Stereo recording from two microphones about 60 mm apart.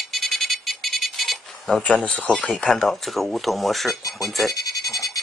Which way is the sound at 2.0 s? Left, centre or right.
Left.